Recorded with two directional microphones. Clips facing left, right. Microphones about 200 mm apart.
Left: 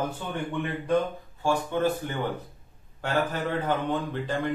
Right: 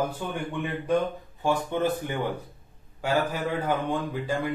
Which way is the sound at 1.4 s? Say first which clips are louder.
Even; 20° right (ahead or behind).